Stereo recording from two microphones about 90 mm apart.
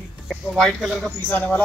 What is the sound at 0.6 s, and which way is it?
Speech, 5° left (ahead or behind).